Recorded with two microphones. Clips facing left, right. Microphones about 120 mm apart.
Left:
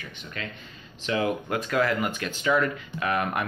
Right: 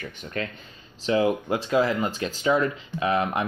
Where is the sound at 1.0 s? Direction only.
25° right (ahead or behind).